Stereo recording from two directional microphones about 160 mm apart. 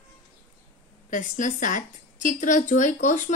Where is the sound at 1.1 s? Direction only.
55° left (ahead or behind).